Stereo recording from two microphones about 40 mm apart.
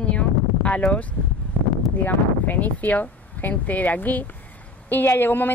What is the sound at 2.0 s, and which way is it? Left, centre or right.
Speech, left.